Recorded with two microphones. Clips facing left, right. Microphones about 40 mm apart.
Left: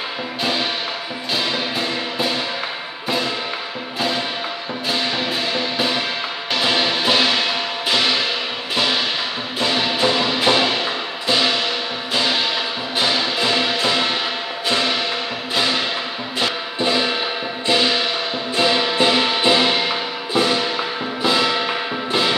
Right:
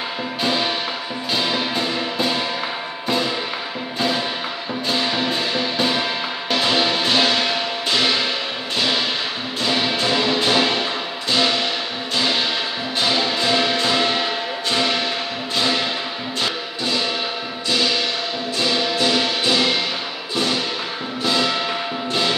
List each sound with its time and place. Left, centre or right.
0.4 s music: centre
4.8 s music: centre
13.0 s music: centre
16.3 s music: centre